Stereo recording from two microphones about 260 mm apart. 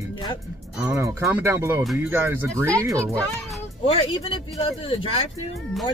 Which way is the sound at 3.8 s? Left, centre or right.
Left.